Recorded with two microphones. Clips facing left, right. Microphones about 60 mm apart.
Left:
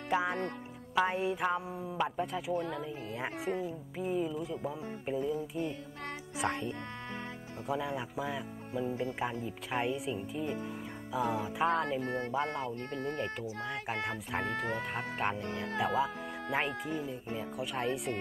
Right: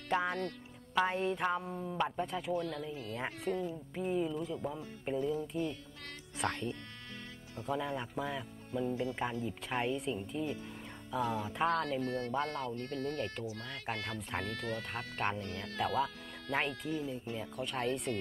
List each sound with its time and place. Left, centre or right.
0.1 s speech: centre
2.5 s speech: left
11.7 s speech: left
15.4 s speech: left